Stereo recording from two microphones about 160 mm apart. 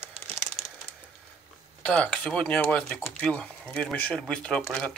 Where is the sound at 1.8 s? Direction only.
5° left (ahead or behind).